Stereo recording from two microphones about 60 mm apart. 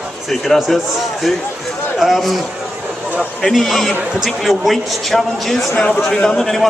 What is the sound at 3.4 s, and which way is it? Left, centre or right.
Speech, centre.